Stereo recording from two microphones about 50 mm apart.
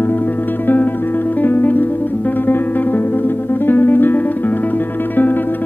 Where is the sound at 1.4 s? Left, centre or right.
Left.